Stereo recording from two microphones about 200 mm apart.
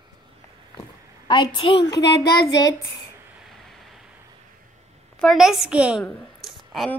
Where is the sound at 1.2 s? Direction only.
25° left (ahead or behind).